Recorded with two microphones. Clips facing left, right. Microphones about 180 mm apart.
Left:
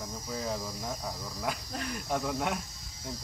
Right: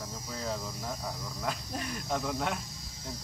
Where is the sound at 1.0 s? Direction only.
5° left (ahead or behind).